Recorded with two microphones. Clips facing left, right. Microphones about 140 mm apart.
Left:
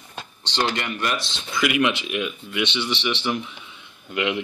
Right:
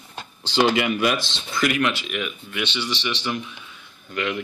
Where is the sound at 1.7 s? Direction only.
20° left (ahead or behind).